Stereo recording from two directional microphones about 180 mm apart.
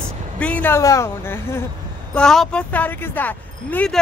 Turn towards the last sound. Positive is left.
turn(degrees=10)  # may be behind; listen again after turning